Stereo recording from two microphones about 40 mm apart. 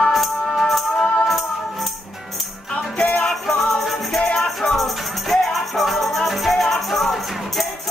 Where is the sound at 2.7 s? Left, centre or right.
Left.